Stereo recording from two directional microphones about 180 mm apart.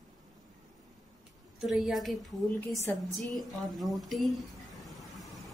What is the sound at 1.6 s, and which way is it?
Speech, centre (ahead or behind).